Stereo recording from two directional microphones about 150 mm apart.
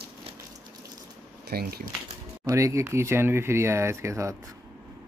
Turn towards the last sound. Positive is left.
turn(degrees=-20)  # may be behind; listen again after turning